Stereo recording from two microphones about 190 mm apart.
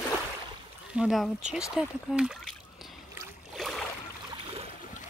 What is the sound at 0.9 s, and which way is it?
Speech, centre (ahead or behind).